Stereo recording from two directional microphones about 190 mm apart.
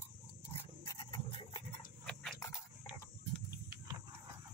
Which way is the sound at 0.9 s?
25° left (ahead or behind).